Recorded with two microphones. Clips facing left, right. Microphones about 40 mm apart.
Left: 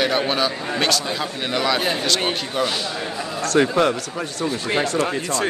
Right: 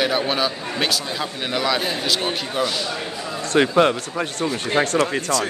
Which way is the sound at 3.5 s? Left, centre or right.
Right.